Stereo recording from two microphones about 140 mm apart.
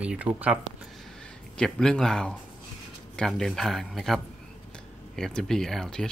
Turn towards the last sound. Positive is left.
turn(degrees=5)  # may be behind; listen again after turning